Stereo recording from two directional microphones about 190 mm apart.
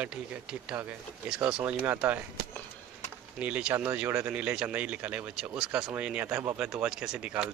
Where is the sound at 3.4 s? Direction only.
10° right (ahead or behind).